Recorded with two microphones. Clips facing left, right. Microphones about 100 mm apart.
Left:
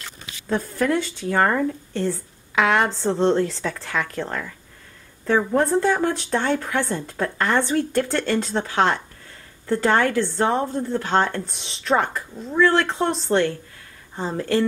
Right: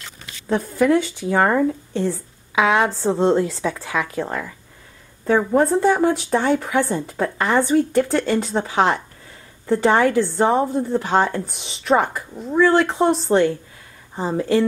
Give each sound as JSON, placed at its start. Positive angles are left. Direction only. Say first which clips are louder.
{"t": 0.5, "sound": "speech", "louder": "right 4 dB", "side_deg": 0}